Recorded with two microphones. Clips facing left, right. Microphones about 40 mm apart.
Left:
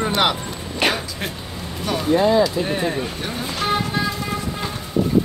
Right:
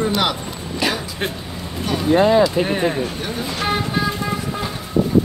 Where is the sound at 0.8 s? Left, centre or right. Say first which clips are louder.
Left 1 dB; left.